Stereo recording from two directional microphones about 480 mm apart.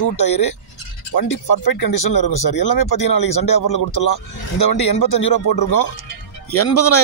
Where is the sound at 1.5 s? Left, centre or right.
Left.